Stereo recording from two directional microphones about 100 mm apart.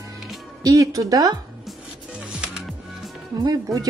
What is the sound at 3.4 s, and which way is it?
Speech, 40° right (ahead or behind).